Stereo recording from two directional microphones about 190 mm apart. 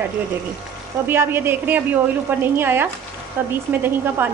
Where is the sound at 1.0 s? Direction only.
10° right (ahead or behind).